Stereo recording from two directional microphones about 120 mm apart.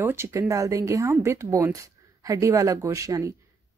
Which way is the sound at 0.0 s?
20° right (ahead or behind).